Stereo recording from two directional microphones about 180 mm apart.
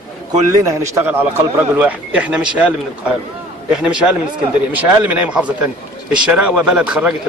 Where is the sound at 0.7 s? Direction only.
15° right (ahead or behind).